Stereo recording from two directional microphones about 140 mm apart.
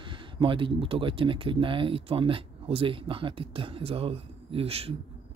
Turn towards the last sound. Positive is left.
turn(degrees=-45)  # may be behind; listen again after turning